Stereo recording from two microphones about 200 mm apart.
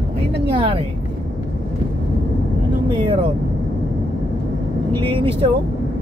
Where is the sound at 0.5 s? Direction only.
25° right (ahead or behind).